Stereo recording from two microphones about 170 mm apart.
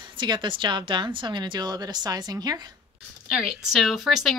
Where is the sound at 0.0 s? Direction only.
25° right (ahead or behind).